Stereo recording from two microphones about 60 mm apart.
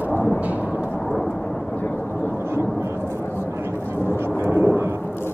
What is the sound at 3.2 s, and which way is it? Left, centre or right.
Vehicle, left.